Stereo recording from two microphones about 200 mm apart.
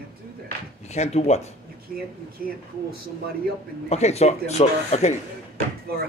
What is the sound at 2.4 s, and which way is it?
Speech, 50° right (ahead or behind).